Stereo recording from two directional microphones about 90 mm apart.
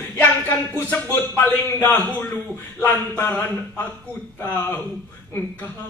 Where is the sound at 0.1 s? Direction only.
20° left (ahead or behind).